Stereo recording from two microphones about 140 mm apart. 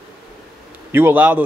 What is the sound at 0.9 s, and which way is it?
Speech, 15° right (ahead or behind).